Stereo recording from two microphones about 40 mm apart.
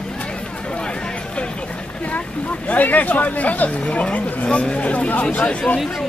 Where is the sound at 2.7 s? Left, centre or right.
Left.